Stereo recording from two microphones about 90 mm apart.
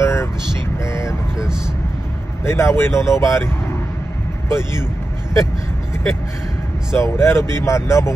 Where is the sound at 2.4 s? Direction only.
30° left (ahead or behind).